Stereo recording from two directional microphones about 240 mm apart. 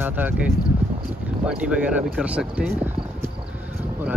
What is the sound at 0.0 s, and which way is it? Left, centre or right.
Speech, centre.